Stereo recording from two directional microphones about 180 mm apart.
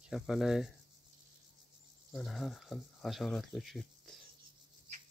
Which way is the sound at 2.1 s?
Centre (ahead or behind).